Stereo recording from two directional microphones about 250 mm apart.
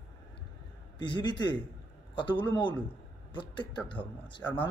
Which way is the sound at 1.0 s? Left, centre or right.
Centre.